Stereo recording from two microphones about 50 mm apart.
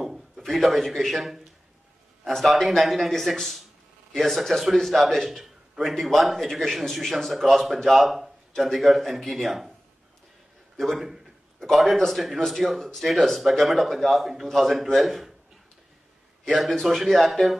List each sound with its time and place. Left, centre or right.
0.4 s a man's voice: centre
10.8 s a man's voice: centre
16.4 s a man's voice: centre